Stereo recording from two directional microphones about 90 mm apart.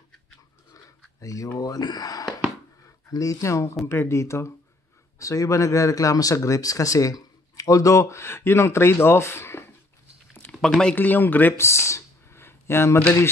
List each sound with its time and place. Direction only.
1.2 s speech: 40° left (ahead or behind)
10.5 s a sound: 5° right (ahead or behind)
11.0 s speech: 20° left (ahead or behind)